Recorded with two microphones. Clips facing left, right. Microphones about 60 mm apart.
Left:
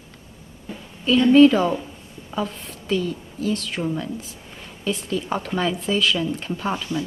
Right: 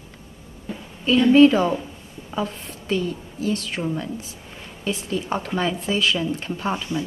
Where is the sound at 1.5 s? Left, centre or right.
Centre.